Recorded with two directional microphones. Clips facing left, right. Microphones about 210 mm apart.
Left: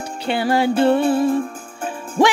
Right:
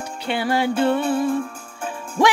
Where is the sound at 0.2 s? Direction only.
35° left (ahead or behind).